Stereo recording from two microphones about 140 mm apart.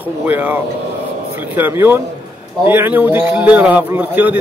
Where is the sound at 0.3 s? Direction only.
10° right (ahead or behind).